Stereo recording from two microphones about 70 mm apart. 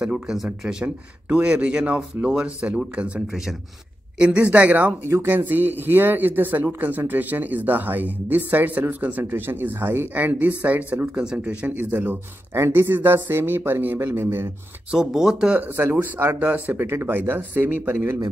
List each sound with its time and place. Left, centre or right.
0.0 s speech: centre
5.0 s speech: right
12.5 s speech: right
14.9 s speech: centre
15.6 s speech: right